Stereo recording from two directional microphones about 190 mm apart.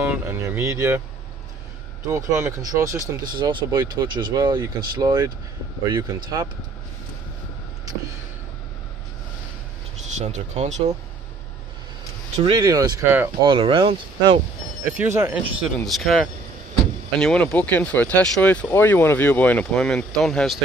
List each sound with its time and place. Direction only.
0.0 s speech: 10° right (ahead or behind)
2.0 s speech: 15° right (ahead or behind)
10.1 s speech: 35° right (ahead or behind)
12.4 s speech: 25° right (ahead or behind)
13.4 s speech: 25° right (ahead or behind)
14.9 s speech: 10° right (ahead or behind)
15.8 s speech: centre (ahead or behind)